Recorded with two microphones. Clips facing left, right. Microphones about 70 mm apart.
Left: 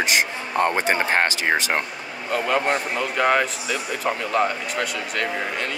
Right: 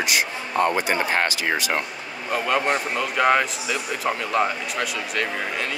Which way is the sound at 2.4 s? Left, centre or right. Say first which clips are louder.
Even; centre.